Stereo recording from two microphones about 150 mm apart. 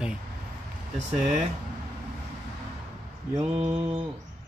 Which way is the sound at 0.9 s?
50° right (ahead or behind).